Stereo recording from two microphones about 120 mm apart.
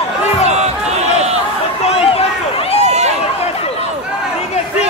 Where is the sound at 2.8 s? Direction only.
65° right (ahead or behind).